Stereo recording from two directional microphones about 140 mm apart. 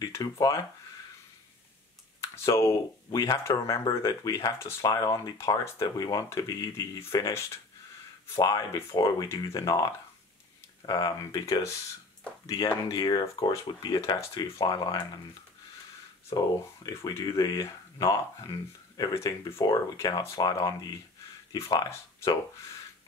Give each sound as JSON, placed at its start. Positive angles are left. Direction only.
{"t": 0.0, "sound": "speech", "side_deg": 25}
{"t": 2.2, "sound": "speech", "side_deg": 20}
{"t": 16.3, "sound": "speech", "side_deg": 30}